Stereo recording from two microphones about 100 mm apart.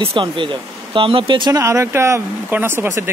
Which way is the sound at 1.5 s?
30° right (ahead or behind).